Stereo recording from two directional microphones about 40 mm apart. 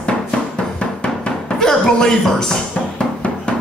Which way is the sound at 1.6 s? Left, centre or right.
Centre.